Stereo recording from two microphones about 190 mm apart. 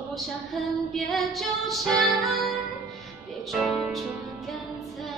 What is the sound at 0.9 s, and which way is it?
Music, centre (ahead or behind).